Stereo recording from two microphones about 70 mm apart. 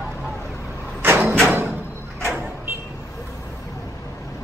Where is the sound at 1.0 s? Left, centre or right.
Right.